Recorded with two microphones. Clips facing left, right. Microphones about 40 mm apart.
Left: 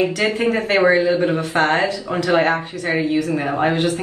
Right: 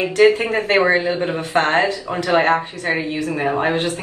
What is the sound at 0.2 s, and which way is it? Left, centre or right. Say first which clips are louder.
Speech: right 4 dB; right.